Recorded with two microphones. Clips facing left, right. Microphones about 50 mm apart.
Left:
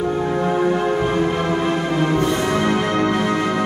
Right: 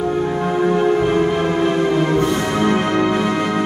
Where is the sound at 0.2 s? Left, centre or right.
Centre.